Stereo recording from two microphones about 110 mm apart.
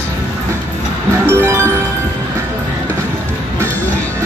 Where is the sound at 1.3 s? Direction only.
25° right (ahead or behind).